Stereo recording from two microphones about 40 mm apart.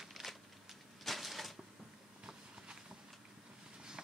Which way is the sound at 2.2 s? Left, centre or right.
Centre.